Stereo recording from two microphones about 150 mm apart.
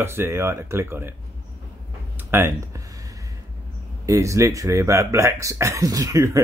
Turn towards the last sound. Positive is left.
turn(degrees=-20)  # may be behind; listen again after turning